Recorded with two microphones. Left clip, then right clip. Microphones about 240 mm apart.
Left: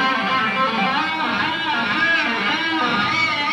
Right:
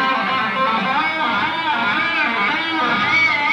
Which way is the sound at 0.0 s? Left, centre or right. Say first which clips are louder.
Right 1 dB; right.